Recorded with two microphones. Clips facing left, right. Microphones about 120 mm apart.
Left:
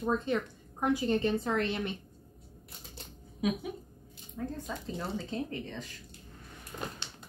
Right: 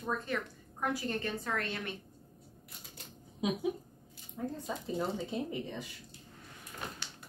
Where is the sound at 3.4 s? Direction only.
25° right (ahead or behind).